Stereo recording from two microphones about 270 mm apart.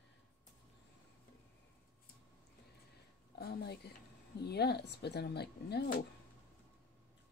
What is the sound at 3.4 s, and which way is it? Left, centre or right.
Speech, left.